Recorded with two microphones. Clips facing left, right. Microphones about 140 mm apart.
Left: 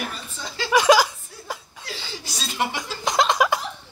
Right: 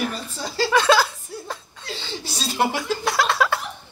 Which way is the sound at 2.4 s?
35° right (ahead or behind).